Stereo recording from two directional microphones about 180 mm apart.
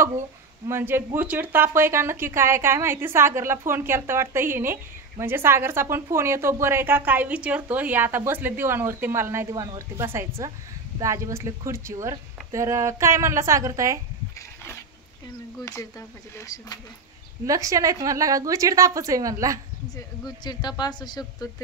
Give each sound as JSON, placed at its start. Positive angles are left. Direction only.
{"t": 0.7, "sound": "a woman's voice", "side_deg": -15}
{"t": 15.6, "sound": "a woman's voice", "side_deg": 15}
{"t": 17.5, "sound": "a woman's voice", "side_deg": -20}
{"t": 20.4, "sound": "a woman's voice", "side_deg": 20}